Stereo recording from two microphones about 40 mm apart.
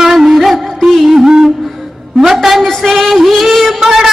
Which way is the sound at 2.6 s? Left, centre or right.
Centre.